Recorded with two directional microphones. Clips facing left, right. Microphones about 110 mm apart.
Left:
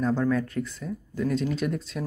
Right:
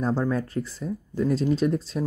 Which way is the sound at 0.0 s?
30° right (ahead or behind).